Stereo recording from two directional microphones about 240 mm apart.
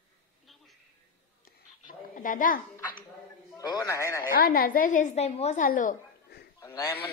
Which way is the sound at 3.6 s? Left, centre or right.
Centre.